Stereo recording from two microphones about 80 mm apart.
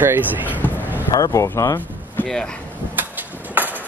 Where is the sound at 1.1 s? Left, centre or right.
Left.